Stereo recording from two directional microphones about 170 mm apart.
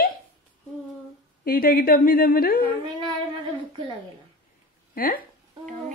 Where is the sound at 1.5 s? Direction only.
60° left (ahead or behind).